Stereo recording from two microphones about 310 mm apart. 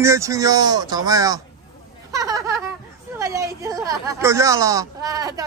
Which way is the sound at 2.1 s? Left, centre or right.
Centre.